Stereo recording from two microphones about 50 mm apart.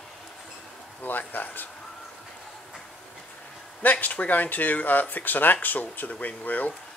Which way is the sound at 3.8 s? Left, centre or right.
Left.